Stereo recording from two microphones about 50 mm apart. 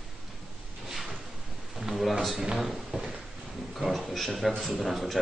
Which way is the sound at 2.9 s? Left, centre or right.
Centre.